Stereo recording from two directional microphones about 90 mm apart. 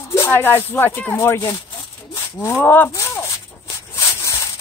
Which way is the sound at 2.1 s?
30° left (ahead or behind).